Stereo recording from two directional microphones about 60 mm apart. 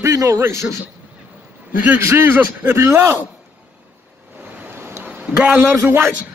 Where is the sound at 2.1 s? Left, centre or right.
Right.